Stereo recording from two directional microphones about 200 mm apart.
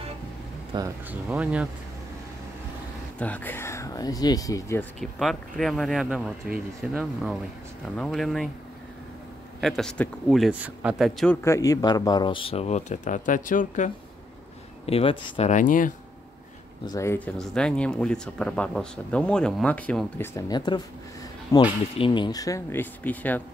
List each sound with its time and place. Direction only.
0.7 s speech: 25° right (ahead or behind)
1.3 s speech: 5° right (ahead or behind)
3.2 s speech: 10° left (ahead or behind)
5.0 s speech: centre (ahead or behind)
9.6 s speech: centre (ahead or behind)
11.4 s speech: 15° left (ahead or behind); by 13.9 s 40° left (ahead or behind)
14.9 s speech: 30° left (ahead or behind)
16.8 s speech: 15° left (ahead or behind)